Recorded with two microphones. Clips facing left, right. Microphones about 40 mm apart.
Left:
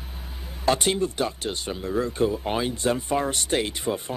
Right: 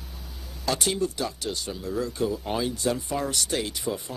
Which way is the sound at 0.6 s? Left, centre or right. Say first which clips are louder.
Left 4 dB; left.